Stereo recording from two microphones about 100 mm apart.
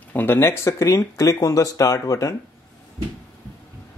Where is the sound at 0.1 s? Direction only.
20° left (ahead or behind).